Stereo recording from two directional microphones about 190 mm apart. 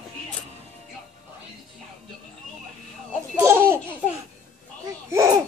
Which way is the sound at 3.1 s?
10° right (ahead or behind).